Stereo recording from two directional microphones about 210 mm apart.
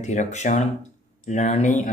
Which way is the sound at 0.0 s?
35° left (ahead or behind).